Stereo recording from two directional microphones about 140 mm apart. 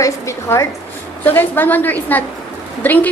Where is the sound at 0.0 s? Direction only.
20° left (ahead or behind).